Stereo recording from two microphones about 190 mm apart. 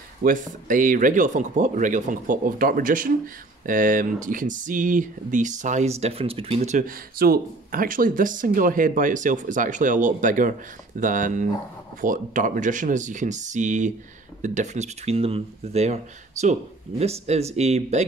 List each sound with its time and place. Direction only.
0.2 s speech: 45° right (ahead or behind)